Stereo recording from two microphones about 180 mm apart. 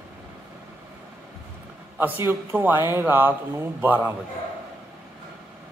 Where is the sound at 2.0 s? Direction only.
10° right (ahead or behind).